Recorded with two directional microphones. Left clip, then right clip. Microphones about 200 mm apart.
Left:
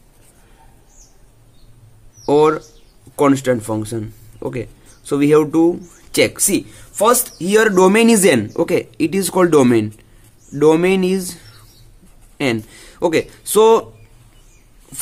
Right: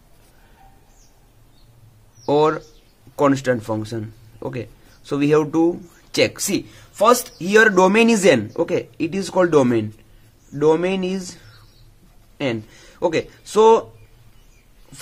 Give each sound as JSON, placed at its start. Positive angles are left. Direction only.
{"t": 2.2, "sound": "speech", "side_deg": 0}